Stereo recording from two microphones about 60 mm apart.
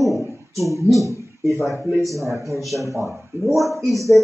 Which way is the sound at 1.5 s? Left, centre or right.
Left.